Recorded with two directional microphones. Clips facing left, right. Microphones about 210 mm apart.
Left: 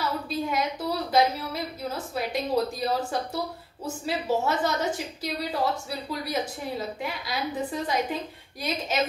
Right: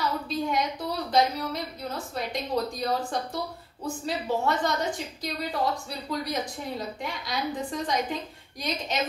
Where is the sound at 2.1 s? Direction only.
5° left (ahead or behind).